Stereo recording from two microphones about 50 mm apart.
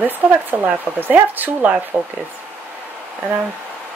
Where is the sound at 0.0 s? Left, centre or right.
Right.